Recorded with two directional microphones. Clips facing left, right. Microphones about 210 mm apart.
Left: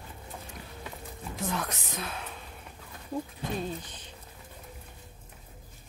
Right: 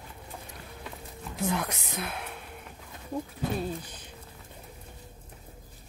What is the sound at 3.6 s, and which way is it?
Speech, 10° right (ahead or behind).